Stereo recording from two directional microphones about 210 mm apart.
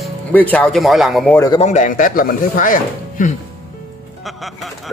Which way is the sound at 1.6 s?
35° left (ahead or behind).